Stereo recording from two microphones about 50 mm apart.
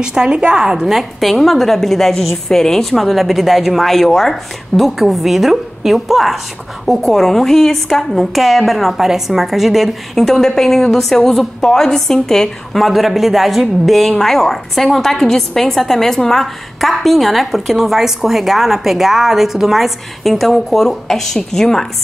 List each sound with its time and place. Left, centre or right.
0.0 s a woman's voice: centre